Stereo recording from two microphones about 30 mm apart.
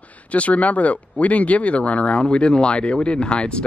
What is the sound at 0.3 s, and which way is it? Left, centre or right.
Speech, left.